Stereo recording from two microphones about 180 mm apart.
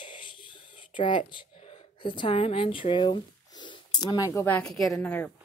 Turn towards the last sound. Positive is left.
turn(degrees=10)  # may be behind; listen again after turning